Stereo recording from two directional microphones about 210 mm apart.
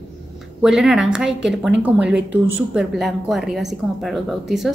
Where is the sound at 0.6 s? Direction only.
Centre (ahead or behind).